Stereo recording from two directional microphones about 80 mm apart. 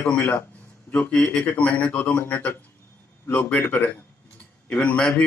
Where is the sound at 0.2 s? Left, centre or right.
Left.